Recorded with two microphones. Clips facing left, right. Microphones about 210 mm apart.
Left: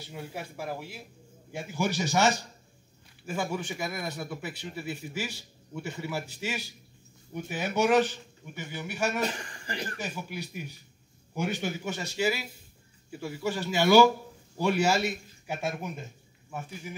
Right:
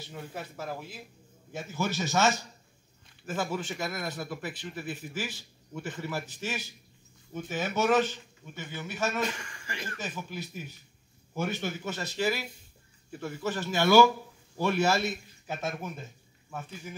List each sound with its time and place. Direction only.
0.1 s speech: 10° left (ahead or behind)
9.2 s speech: 35° left (ahead or behind)
9.9 s speech: 10° left (ahead or behind)